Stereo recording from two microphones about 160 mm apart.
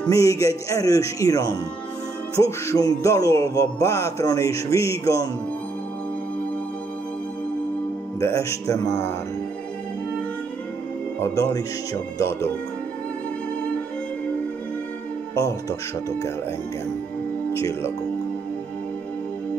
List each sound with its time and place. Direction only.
0.1 s music: 20° left (ahead or behind)
8.2 s music: 20° left (ahead or behind)
11.1 s music: 20° left (ahead or behind)
17.5 s speech: 15° left (ahead or behind)